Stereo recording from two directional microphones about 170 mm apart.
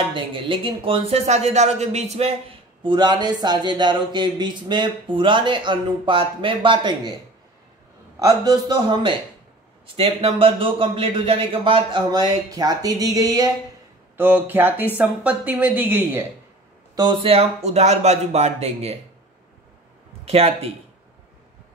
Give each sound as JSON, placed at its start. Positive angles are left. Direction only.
{"t": 0.1, "sound": "a man's voice", "side_deg": -30}
{"t": 8.2, "sound": "a man's voice", "side_deg": -20}
{"t": 14.1, "sound": "speech", "side_deg": -10}
{"t": 16.9, "sound": "speech", "side_deg": -25}
{"t": 20.2, "sound": "speech", "side_deg": -35}